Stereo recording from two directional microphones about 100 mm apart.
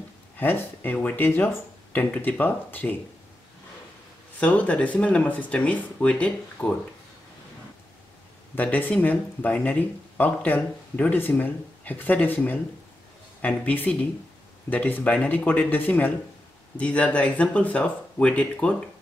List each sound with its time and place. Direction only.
0.4 s speech: 20° left (ahead or behind)
4.4 s speech: 15° left (ahead or behind)
8.5 s speech: 15° left (ahead or behind)
13.4 s speech: 15° left (ahead or behind)